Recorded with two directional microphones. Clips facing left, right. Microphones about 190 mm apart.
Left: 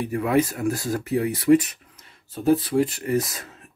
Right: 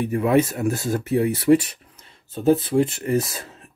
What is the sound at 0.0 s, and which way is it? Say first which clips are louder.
Speech: right 3 dB; 25° right (ahead or behind).